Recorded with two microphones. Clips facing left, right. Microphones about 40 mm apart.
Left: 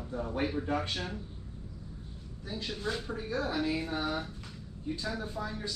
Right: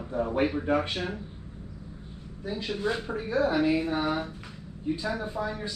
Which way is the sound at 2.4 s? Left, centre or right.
Right.